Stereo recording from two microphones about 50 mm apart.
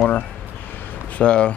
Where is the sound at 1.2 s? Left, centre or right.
Centre.